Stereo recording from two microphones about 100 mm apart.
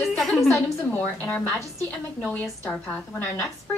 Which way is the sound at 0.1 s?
5° left (ahead or behind).